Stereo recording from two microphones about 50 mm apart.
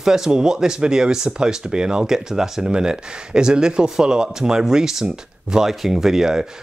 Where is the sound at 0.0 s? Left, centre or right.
Centre.